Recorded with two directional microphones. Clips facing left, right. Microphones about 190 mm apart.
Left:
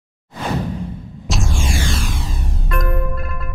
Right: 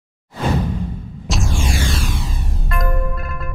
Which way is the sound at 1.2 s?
Centre (ahead or behind).